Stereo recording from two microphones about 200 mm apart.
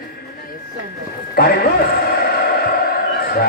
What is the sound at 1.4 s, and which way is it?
Speech, 50° left (ahead or behind).